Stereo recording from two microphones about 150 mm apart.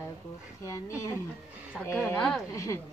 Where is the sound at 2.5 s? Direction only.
20° left (ahead or behind).